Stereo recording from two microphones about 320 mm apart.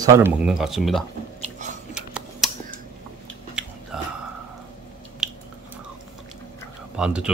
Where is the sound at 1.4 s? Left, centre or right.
Right.